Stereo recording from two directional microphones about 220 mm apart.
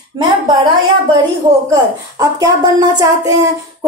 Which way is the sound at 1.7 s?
15° right (ahead or behind).